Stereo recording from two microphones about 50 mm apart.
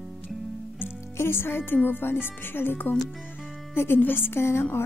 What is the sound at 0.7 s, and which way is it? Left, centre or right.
Music, left.